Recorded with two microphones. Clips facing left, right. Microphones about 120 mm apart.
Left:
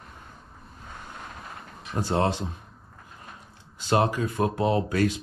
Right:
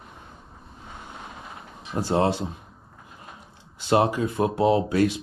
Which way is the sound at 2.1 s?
15° right (ahead or behind).